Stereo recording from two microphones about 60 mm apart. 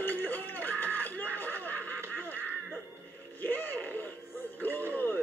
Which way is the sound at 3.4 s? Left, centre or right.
Left.